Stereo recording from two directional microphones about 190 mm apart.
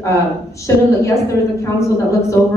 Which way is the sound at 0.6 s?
15° left (ahead or behind).